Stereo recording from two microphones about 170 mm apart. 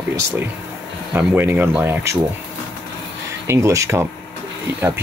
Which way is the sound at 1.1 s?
10° right (ahead or behind).